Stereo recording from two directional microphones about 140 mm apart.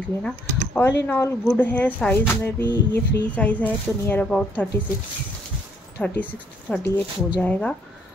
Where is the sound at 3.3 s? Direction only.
10° left (ahead or behind).